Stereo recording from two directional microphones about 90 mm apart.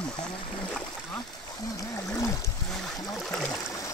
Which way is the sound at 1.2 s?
45° left (ahead or behind).